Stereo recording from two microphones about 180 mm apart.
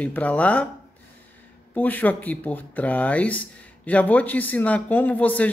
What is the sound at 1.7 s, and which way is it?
Speech, 10° left (ahead or behind).